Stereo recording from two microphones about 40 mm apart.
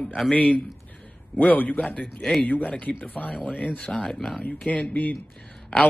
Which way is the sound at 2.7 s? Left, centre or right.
Left.